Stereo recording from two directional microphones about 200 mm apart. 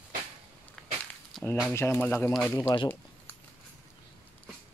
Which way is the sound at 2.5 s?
20° left (ahead or behind).